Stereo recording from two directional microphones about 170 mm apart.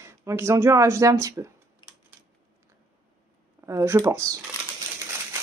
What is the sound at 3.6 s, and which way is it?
Speech, 15° right (ahead or behind).